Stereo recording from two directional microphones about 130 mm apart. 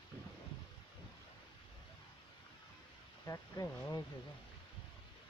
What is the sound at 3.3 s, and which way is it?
Speech, 25° left (ahead or behind).